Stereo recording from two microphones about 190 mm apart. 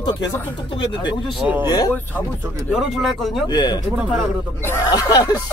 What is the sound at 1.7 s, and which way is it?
Speech, 20° left (ahead or behind).